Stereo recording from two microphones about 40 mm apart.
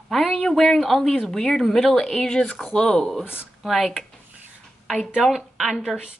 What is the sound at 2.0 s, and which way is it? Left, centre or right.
Speech, centre.